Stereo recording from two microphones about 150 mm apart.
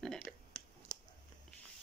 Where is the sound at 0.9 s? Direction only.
25° left (ahead or behind).